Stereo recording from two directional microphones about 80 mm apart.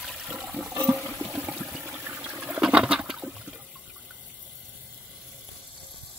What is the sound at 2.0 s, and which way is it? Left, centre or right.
Water, right.